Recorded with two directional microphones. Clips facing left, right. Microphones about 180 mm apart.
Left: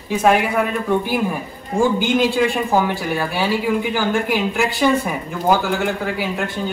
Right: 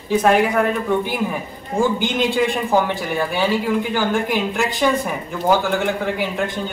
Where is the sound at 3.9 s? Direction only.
5° left (ahead or behind).